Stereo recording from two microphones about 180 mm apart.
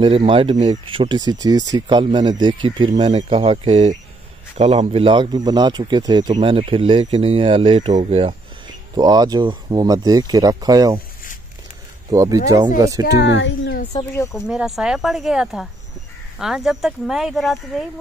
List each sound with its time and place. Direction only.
0.0 s a man's voice: 30° right (ahead or behind)
12.1 s a man's voice: 20° right (ahead or behind)
13.0 s speech: 80° left
13.9 s speech: 15° left (ahead or behind)
14.3 s speech: 5° right (ahead or behind)